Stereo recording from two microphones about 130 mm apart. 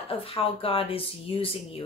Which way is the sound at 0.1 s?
45° left (ahead or behind).